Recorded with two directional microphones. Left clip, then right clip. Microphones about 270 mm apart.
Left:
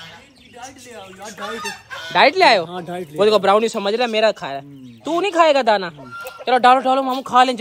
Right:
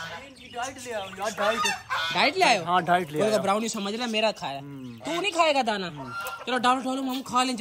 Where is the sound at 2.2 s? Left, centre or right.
Left.